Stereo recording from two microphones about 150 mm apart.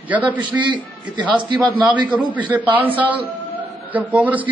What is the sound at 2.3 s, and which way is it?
A man's voice, 10° right (ahead or behind).